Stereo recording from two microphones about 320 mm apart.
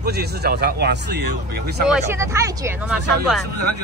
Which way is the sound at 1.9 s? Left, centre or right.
Centre.